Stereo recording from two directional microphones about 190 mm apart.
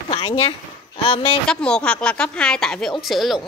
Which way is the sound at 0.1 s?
25° left (ahead or behind).